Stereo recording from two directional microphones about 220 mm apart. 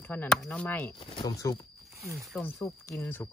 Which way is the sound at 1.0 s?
25° left (ahead or behind).